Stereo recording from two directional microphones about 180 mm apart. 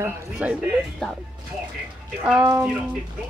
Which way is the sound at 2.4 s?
15° right (ahead or behind).